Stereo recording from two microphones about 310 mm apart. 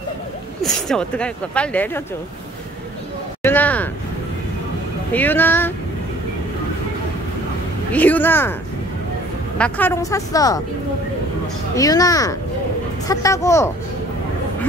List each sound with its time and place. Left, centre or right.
0.7 s speech: centre
3.4 s a sound: centre
5.1 s a woman's voice: centre
7.9 s a woman's voice: centre
9.6 s a woman's voice: centre
11.7 s a woman's voice: centre